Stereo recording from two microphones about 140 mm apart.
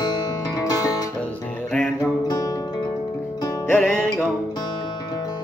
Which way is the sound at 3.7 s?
5° left (ahead or behind).